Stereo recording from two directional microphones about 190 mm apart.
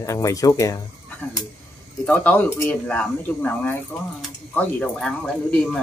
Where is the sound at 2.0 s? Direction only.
10° left (ahead or behind).